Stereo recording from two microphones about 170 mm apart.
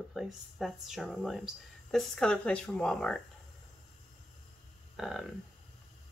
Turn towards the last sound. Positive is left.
turn(degrees=0)  # may be behind; listen again after turning